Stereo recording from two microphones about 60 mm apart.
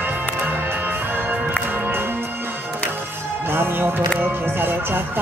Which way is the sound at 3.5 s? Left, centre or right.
Right.